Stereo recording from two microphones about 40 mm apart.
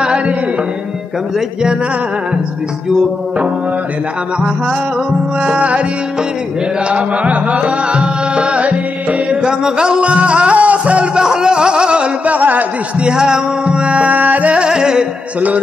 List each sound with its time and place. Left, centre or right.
0.0 s music: right
5.4 s music: right
6.9 s music: right
11.1 s music: centre
12.3 s a sound: right
13.0 s music: centre
13.8 s music: right
14.6 s music: centre